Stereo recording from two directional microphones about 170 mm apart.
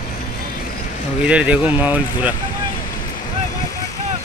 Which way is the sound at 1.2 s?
5° right (ahead or behind).